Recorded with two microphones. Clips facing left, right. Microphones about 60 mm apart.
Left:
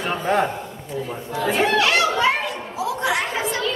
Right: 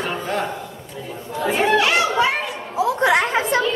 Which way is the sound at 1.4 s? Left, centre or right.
Centre.